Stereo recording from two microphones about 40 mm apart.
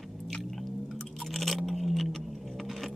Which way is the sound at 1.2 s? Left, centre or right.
Centre.